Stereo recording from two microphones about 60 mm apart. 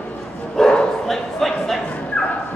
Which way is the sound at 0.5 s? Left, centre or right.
Centre.